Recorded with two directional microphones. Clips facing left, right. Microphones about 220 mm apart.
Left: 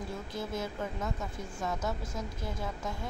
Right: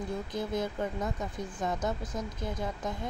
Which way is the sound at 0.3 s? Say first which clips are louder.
Right 3 dB; 15° right (ahead or behind).